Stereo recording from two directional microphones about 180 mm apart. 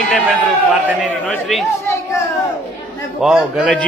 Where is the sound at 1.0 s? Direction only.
5° left (ahead or behind).